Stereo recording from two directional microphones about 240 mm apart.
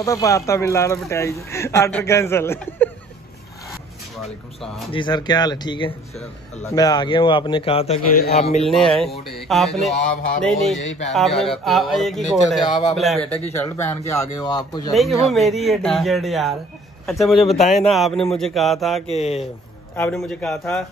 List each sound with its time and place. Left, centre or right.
0.0 s speech: centre
4.9 s a man's voice: centre
8.6 s speech: centre
13.7 s speech: centre
14.9 s speech: centre
19.1 s a man's voice: left
20.0 s speech: centre